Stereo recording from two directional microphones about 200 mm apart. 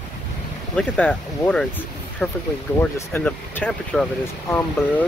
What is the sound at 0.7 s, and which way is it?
Speech, 5° left (ahead or behind).